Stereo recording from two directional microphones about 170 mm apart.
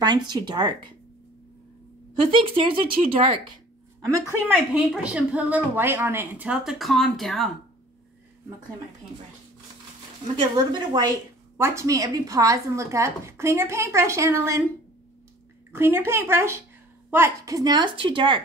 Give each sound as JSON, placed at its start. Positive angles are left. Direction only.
{"t": 0.0, "sound": "speech", "side_deg": -25}
{"t": 2.3, "sound": "speech", "side_deg": -30}
{"t": 4.0, "sound": "a woman's voice", "side_deg": -15}
{"t": 10.3, "sound": "a woman's voice", "side_deg": -25}
{"t": 15.7, "sound": "a woman's voice", "side_deg": -15}